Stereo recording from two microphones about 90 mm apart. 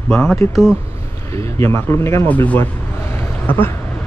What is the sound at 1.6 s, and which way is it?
Speech, 30° left (ahead or behind).